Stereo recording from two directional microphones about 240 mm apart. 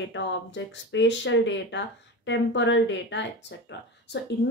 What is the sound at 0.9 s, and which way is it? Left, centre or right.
A woman's voice, left.